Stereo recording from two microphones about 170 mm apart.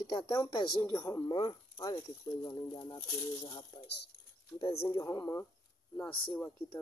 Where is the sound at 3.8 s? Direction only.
85° left.